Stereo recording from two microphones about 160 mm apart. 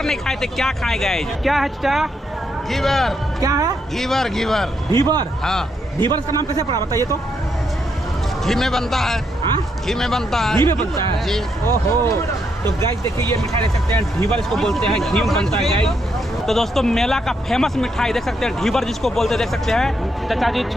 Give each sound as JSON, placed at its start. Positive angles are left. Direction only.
{"t": 0.0, "sound": "speech", "side_deg": 5}
{"t": 3.3, "sound": "a man's voice", "side_deg": -20}
{"t": 4.0, "sound": "speech", "side_deg": 0}
{"t": 5.9, "sound": "a man's voice", "side_deg": -30}
{"t": 8.5, "sound": "speech", "side_deg": 0}
{"t": 11.6, "sound": "speech", "side_deg": 15}
{"t": 13.9, "sound": "speech", "side_deg": 5}